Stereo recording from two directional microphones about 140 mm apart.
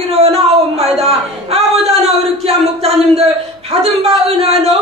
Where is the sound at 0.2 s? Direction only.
45° right (ahead or behind).